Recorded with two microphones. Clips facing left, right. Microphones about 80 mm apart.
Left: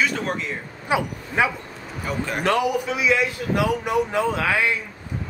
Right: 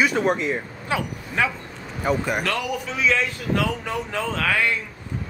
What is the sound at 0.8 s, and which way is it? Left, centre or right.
Speech, centre.